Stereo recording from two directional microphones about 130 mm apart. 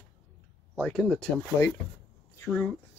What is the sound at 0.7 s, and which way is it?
A man's voice, 10° left (ahead or behind).